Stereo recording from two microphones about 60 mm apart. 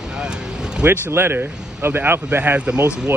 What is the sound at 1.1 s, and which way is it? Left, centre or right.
Speech, right.